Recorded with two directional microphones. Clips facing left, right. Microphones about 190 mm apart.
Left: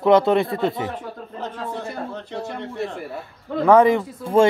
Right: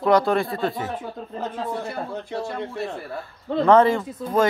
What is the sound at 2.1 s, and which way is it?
Speech, 10° right (ahead or behind).